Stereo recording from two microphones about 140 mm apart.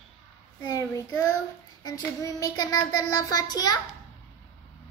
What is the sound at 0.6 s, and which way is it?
Child singing, 25° left (ahead or behind).